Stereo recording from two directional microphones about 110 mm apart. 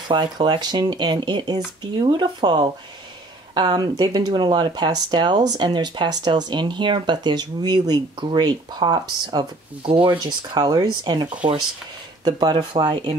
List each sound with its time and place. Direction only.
0.1 s speech: 45° right (ahead or behind)
12.3 s speech: 40° right (ahead or behind)